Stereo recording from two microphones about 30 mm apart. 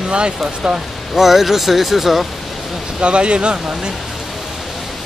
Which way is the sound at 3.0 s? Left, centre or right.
Right.